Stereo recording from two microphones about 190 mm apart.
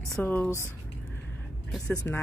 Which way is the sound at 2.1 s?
10° left (ahead or behind).